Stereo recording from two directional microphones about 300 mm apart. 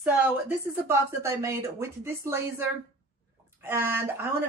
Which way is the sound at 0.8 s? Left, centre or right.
Centre.